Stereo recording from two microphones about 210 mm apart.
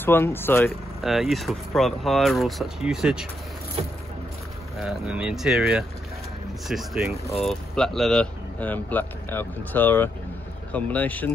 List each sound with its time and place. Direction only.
0.0 s speech: 10° left (ahead or behind)
1.0 s speech: centre (ahead or behind)
4.7 s speech: centre (ahead or behind)
7.1 s speech: 30° left (ahead or behind)
7.4 s speech: centre (ahead or behind)